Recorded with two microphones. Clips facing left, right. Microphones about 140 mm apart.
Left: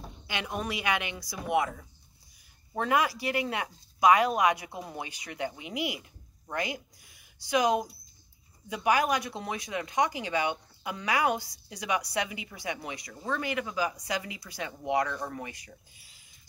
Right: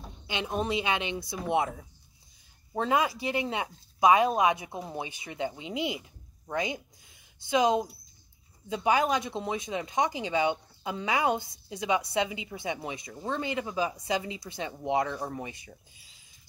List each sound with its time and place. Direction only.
0.3 s speech: 25° right (ahead or behind)
2.7 s speech: 20° right (ahead or behind)